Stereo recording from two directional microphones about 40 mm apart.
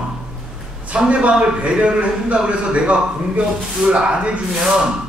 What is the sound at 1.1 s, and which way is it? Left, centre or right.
Speech, right.